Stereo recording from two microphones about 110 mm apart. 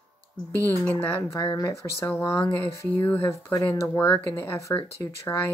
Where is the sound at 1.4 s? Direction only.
35° left (ahead or behind).